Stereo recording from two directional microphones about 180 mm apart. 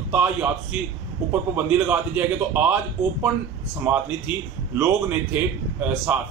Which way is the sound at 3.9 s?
10° right (ahead or behind).